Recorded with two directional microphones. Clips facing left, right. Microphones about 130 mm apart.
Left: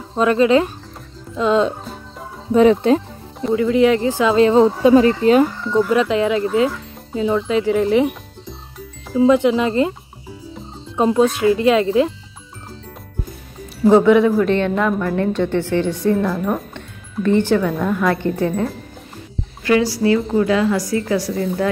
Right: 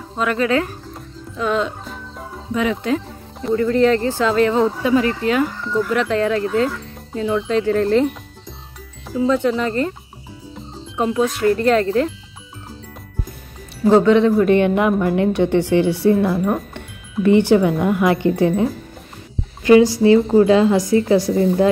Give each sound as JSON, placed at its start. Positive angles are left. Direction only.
{"t": 0.2, "sound": "speech", "side_deg": 25}
{"t": 2.5, "sound": "speech", "side_deg": 35}
{"t": 3.3, "sound": "speech", "side_deg": 5}
{"t": 9.2, "sound": "speech", "side_deg": 15}
{"t": 11.1, "sound": "speech", "side_deg": 20}
{"t": 13.8, "sound": "speech", "side_deg": 10}
{"t": 14.4, "sound": "a woman's voice", "side_deg": -15}